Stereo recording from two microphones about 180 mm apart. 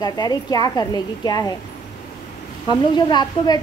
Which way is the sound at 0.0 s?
20° left (ahead or behind).